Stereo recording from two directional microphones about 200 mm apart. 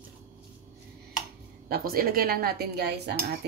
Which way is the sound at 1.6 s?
50° right (ahead or behind).